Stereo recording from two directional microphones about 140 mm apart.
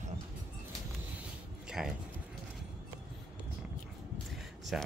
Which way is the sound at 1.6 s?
5° right (ahead or behind).